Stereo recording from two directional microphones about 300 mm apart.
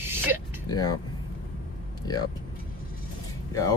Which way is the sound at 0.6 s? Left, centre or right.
Centre.